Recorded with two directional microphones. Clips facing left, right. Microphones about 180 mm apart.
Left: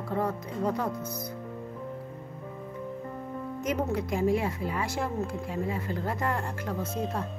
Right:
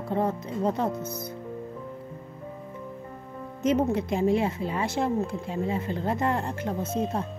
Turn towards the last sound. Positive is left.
turn(degrees=-20)  # may be behind; listen again after turning